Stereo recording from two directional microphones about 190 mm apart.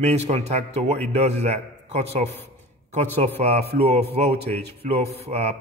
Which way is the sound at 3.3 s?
35° right (ahead or behind).